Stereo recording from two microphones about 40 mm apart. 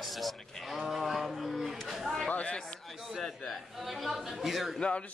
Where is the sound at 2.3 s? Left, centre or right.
Left.